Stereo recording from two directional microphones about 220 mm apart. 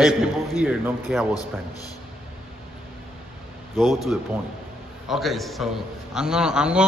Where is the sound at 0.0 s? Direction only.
Centre (ahead or behind).